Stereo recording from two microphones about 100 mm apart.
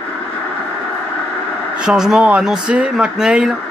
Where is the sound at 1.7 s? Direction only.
10° right (ahead or behind).